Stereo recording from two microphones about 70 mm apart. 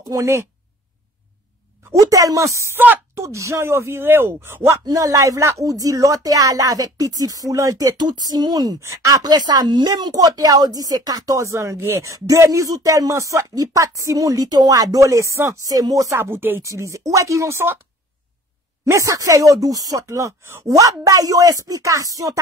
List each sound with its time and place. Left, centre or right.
0.1 s speech: right
2.0 s speech: right
4.8 s speech: right
8.7 s speech: right
9.3 s speech: right
12.1 s speech: right
16.2 s speech: right
16.6 s speech: right
18.9 s speech: right